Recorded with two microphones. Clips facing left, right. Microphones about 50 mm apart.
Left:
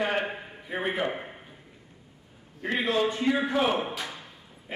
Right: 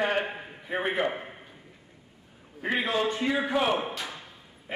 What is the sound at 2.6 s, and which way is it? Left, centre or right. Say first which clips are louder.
Speech: left 1 dB; centre.